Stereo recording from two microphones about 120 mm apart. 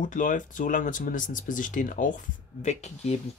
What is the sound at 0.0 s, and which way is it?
Speech, 90° left.